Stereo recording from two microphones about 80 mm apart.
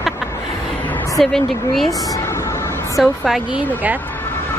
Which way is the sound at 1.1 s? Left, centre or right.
Centre.